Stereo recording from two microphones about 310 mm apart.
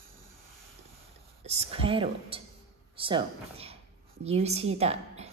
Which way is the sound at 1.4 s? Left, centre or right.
Centre.